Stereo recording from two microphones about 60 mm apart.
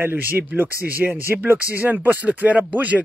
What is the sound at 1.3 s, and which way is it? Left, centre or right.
Speech, right.